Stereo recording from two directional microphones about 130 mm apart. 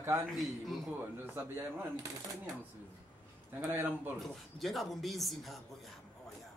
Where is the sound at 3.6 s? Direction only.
15° right (ahead or behind).